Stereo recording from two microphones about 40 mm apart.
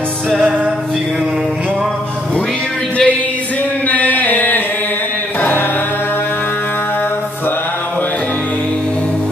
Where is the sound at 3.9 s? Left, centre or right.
Left.